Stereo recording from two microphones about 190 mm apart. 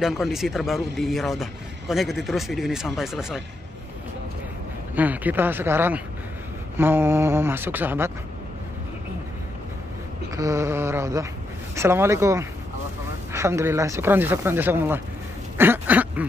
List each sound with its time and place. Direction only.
0.0 s speech: centre (ahead or behind)
4.9 s speech: 10° right (ahead or behind)
10.3 s speech: 15° right (ahead or behind)
15.5 s duck: 10° right (ahead or behind)